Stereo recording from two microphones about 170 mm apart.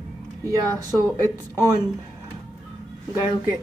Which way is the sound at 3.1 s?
15° right (ahead or behind).